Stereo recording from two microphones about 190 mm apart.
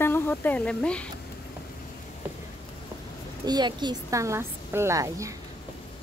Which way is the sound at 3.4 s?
20° right (ahead or behind).